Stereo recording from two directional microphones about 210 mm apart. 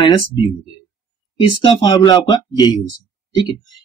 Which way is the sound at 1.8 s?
20° left (ahead or behind).